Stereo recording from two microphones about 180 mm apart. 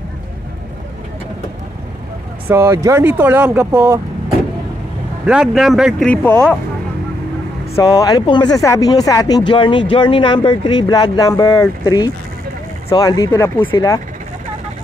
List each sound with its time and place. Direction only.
2.5 s speech: 15° right (ahead or behind)
5.2 s speech: 5° right (ahead or behind)
7.7 s speech: 20° left (ahead or behind)